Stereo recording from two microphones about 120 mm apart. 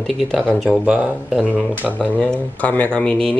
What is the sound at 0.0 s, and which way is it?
Speech, centre (ahead or behind).